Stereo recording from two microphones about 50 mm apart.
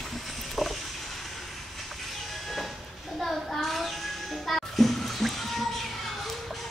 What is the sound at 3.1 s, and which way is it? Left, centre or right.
Music, centre.